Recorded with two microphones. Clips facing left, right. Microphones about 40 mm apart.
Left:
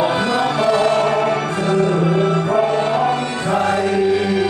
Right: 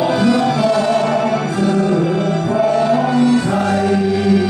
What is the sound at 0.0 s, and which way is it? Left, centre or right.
Music, left.